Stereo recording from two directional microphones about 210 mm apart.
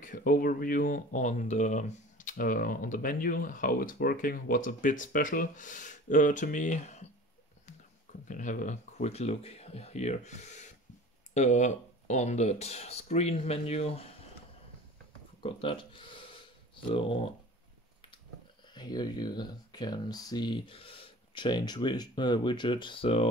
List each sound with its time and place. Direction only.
0.0 s speech: 40° left (ahead or behind)
8.3 s speech: 40° left (ahead or behind)
15.4 s a sound: 25° left (ahead or behind)
16.9 s speech: 25° left (ahead or behind)
18.7 s speech: 20° left (ahead or behind)